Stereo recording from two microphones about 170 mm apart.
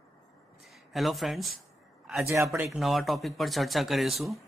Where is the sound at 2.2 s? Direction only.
15° right (ahead or behind).